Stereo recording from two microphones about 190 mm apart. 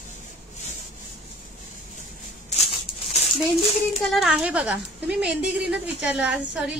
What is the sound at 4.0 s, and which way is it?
Speech, centre (ahead or behind).